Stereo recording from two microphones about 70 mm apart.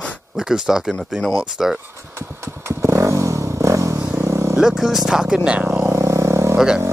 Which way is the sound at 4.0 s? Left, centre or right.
Right.